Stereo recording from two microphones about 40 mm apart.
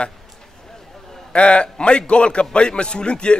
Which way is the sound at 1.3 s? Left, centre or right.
Left.